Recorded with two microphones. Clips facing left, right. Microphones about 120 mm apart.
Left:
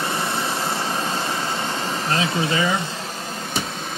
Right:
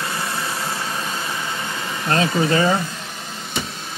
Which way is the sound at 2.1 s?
45° right (ahead or behind).